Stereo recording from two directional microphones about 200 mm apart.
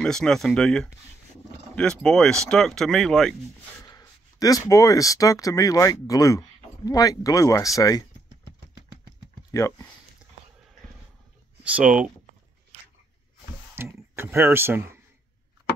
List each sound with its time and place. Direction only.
0.0 s speech: 5° left (ahead or behind)
3.8 s speech: 20° left (ahead or behind)
9.5 s speech: 15° left (ahead or behind)
11.6 s speech: 5° right (ahead or behind)
13.9 s speech: 10° right (ahead or behind)